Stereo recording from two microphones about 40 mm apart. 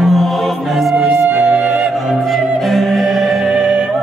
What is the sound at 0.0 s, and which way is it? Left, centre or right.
Music, centre.